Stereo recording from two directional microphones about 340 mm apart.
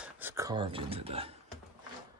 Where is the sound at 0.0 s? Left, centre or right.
Centre.